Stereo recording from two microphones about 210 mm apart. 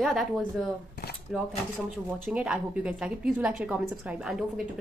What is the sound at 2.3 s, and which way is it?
A woman's voice, 5° right (ahead or behind).